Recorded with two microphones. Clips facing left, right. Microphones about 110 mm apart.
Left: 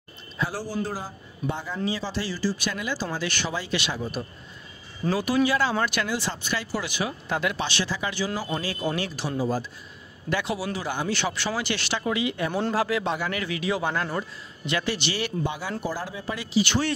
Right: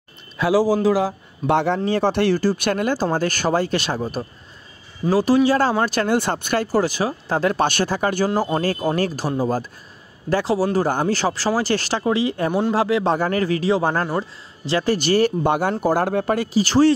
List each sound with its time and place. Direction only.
0.4 s a man's voice: 90° right
1.9 s speech: 55° right (ahead or behind)
5.1 s speech: 30° right (ahead or behind)
6.0 s speech: 55° right (ahead or behind)
10.3 s speech: 35° right (ahead or behind)
12.7 s speech: 25° right (ahead or behind)
13.1 s speech: 40° right (ahead or behind)